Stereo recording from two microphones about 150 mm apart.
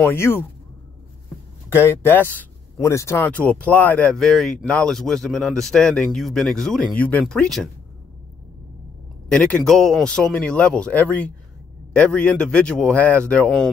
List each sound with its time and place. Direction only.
0.0 s a man's voice: 15° left (ahead or behind)
1.7 s speech: 15° left (ahead or behind)
9.3 s a man's voice: 5° left (ahead or behind)